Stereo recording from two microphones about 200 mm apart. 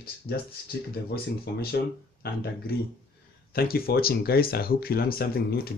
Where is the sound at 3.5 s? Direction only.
50° left (ahead or behind).